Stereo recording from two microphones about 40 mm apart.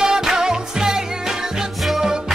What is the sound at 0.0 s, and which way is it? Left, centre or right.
Music, centre.